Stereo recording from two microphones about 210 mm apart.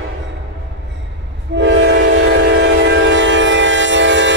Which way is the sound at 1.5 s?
60° right (ahead or behind).